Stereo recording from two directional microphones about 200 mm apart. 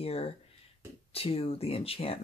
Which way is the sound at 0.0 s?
30° left (ahead or behind).